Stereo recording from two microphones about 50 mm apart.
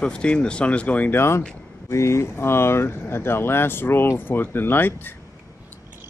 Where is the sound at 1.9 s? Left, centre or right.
Left.